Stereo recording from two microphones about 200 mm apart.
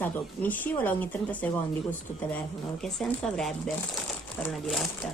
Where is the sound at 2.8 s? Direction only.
Centre (ahead or behind).